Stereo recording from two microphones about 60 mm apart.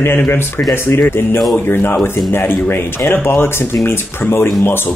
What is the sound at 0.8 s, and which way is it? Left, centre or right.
Speech, left.